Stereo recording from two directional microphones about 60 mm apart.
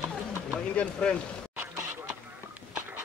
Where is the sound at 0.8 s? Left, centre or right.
Centre.